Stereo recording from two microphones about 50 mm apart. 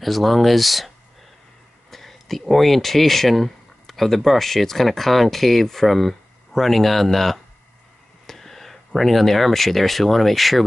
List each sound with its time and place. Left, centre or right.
0.0 s speech: centre